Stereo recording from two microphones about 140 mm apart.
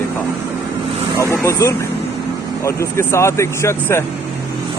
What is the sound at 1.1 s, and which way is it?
Speech, 20° left (ahead or behind).